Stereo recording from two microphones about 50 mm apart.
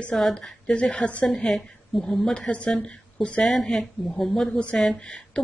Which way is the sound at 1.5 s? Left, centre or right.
Centre.